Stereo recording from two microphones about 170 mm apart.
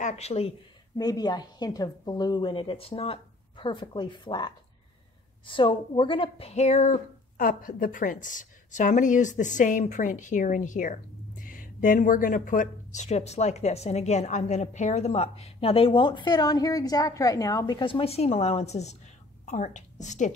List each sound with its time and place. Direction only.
0.0 s speech: 40° left (ahead or behind)
0.9 s a woman's voice: 20° left (ahead or behind); by 20.3 s 45° left (ahead or behind)